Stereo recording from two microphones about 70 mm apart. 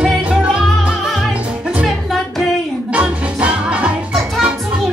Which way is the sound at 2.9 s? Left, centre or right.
Centre.